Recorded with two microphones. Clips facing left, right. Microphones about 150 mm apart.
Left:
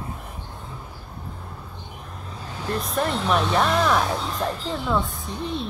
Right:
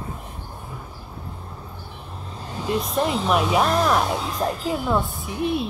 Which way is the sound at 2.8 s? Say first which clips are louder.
Left 1 dB; centre (ahead or behind).